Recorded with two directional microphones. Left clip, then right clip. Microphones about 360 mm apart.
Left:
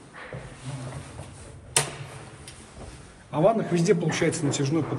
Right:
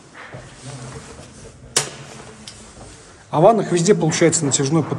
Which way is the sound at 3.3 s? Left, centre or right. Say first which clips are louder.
Right 8 dB; centre.